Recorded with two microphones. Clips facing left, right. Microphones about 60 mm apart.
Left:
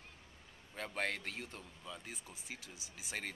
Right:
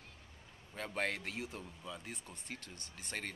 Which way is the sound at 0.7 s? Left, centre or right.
Centre.